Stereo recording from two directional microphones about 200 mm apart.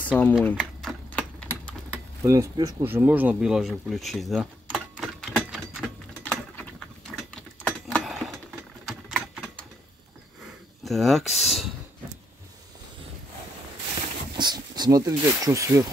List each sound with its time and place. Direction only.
0.2 s typing: 5° left (ahead or behind)
2.2 s a sound: 15° right (ahead or behind)
8.8 s typewriter: centre (ahead or behind)
10.8 s speech: centre (ahead or behind)
14.3 s speech: 20° right (ahead or behind)